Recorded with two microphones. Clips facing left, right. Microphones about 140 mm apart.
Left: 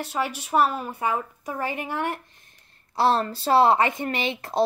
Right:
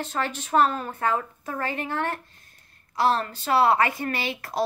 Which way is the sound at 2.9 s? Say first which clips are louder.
Left 2 dB; 30° left (ahead or behind).